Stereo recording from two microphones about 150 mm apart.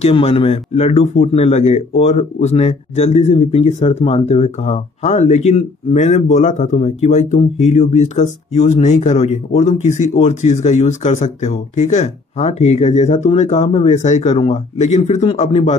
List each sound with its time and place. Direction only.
0.0 s speech: 40° left (ahead or behind)